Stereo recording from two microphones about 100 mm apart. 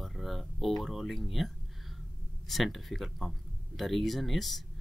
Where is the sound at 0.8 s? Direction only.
Centre (ahead or behind).